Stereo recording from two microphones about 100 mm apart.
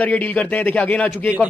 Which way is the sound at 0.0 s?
15° left (ahead or behind).